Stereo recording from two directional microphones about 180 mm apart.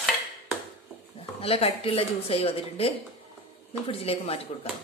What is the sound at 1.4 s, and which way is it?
A woman's voice, 30° left (ahead or behind).